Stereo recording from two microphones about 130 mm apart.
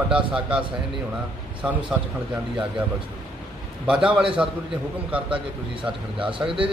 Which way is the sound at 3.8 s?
5° right (ahead or behind).